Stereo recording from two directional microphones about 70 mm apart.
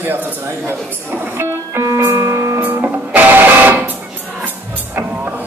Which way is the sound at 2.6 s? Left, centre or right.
Right.